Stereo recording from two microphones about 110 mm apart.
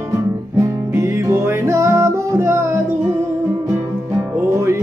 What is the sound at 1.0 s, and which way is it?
Music, 25° right (ahead or behind).